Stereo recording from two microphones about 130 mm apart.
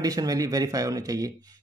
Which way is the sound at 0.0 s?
30° right (ahead or behind).